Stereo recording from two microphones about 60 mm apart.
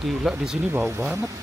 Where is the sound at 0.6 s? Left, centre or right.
Right.